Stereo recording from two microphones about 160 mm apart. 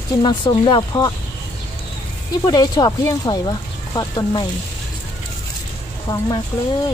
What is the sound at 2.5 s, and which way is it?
Speech, 25° left (ahead or behind).